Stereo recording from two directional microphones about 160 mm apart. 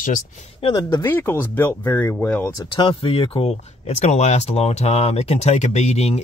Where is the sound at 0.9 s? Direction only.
15° left (ahead or behind).